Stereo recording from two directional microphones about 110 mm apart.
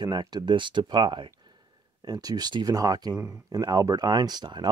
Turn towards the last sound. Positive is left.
turn(degrees=-40)  # may be behind; listen again after turning